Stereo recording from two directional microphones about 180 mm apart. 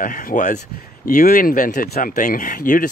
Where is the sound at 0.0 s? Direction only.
50° left (ahead or behind).